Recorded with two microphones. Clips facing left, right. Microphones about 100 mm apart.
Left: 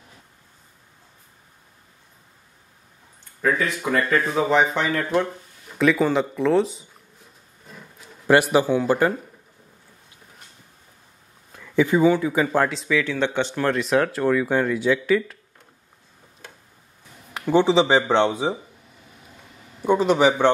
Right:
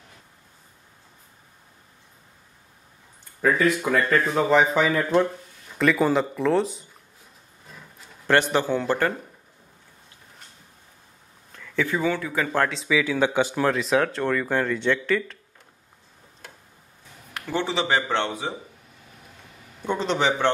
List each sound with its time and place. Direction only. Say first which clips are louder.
3.4 s a man's voice: right 2 dB; centre (ahead or behind)
11.5 s speech: left 6 dB; 15° left (ahead or behind)
12.5 s speech: left 2 dB; centre (ahead or behind)
17.3 s speech: left 9 dB; 20° left (ahead or behind)
19.8 s a man's voice: left 6 dB; 10° left (ahead or behind)